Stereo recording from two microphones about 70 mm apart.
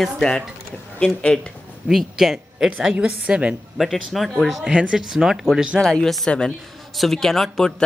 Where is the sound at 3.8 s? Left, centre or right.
Centre.